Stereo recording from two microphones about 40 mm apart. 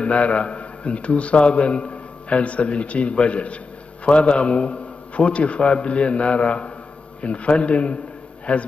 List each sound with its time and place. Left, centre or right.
0.0 s a man's voice: left